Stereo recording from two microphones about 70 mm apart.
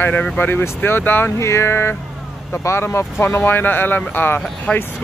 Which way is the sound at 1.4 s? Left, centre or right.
Left.